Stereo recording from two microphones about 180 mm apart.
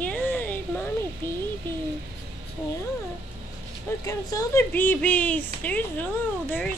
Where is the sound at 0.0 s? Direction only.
10° left (ahead or behind).